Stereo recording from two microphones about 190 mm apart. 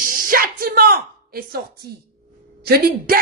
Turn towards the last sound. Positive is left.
turn(degrees=-55)  # may be behind; listen again after turning